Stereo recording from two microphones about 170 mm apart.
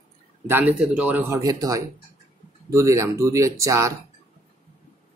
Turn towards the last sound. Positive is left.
turn(degrees=-20)  # may be behind; listen again after turning